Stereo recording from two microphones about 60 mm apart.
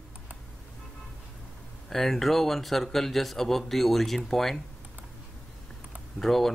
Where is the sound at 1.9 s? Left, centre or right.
Centre.